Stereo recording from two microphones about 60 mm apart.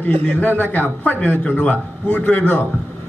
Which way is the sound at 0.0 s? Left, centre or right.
Left.